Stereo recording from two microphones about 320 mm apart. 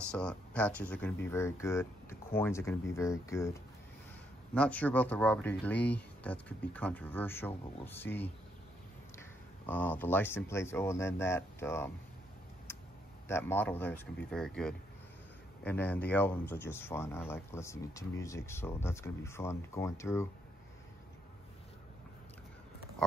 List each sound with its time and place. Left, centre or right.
0.1 s speech: centre
4.6 s speech: centre
9.7 s speech: centre
12.7 s a sound: centre
13.3 s speech: centre